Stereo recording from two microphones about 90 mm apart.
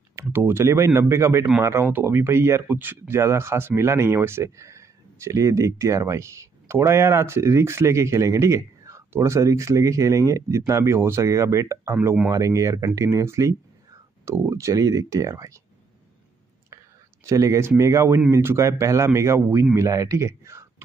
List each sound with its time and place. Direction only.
0.1 s speech: 25° right (ahead or behind)
16.7 s speech: 35° right (ahead or behind)